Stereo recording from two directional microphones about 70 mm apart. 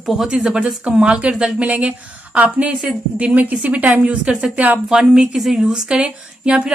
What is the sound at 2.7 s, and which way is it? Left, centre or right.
A woman's voice, centre.